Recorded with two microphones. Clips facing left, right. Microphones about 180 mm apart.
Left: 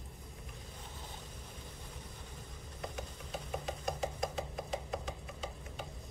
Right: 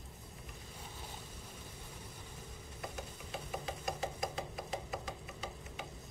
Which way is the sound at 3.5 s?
5° right (ahead or behind).